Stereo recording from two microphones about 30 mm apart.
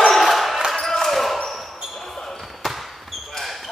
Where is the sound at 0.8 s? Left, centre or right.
Centre.